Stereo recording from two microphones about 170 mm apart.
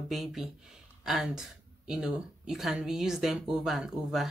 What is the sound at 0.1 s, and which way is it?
Speech, centre (ahead or behind).